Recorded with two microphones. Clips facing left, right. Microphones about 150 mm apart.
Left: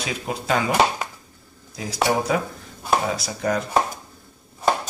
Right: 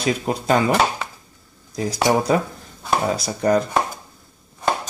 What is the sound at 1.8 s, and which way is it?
Speech, 40° right (ahead or behind).